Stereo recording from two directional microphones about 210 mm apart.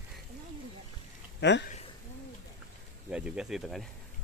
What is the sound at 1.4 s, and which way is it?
Speech, 55° left (ahead or behind).